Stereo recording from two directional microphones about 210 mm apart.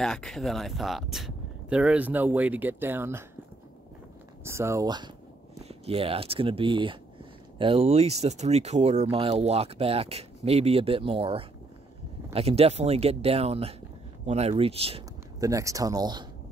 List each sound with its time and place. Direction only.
0.0 s speech: centre (ahead or behind)
4.5 s speech: 15° right (ahead or behind)
15.4 s speech: 15° right (ahead or behind)